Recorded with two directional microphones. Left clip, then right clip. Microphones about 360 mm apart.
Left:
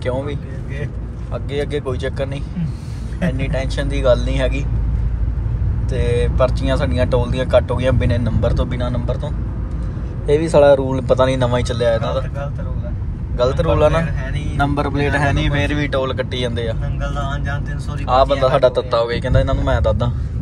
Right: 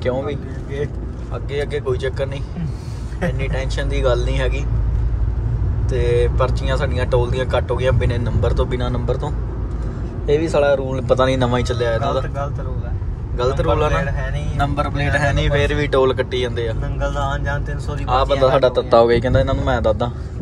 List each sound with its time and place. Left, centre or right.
0.0 s speech: centre
3.3 s speech: centre
5.9 s speech: centre
13.4 s speech: centre
17.1 s speech: right
18.0 s speech: centre